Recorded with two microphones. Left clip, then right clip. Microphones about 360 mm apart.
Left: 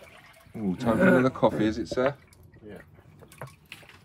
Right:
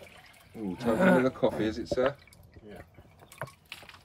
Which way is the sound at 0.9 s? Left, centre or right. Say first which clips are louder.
Left 2 dB; right.